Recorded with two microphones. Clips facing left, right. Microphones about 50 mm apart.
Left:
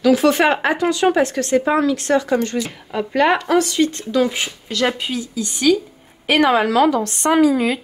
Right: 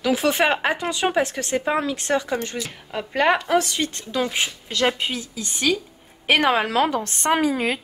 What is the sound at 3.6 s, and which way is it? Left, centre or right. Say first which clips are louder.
A woman's voice: left 8 dB; right.